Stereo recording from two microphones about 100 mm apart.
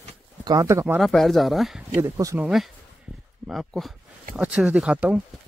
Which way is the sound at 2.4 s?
Centre (ahead or behind).